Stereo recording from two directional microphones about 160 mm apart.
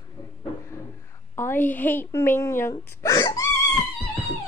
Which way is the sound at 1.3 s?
15° left (ahead or behind).